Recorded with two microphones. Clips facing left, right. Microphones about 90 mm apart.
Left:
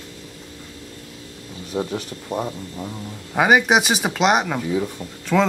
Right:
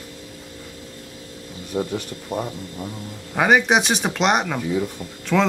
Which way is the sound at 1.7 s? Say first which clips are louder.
Even; 15° left (ahead or behind).